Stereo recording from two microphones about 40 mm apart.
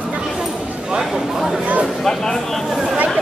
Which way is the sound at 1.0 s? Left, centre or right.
Centre.